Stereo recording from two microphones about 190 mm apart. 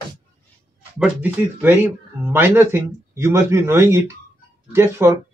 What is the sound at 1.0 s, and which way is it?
A man's voice, 10° right (ahead or behind).